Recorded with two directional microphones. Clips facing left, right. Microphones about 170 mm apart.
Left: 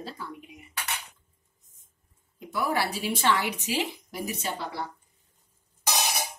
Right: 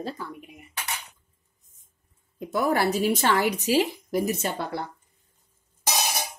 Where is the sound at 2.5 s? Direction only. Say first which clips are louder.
Right 5 dB; 50° right (ahead or behind).